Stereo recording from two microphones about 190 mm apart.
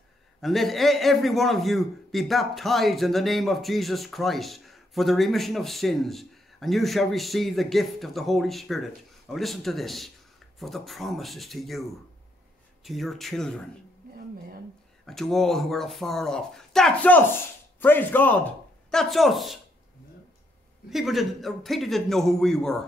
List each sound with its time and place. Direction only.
0.4 s a man's voice: centre (ahead or behind)
12.8 s a man's voice: centre (ahead or behind)
15.0 s a man's voice: centre (ahead or behind)
20.9 s a man's voice: centre (ahead or behind)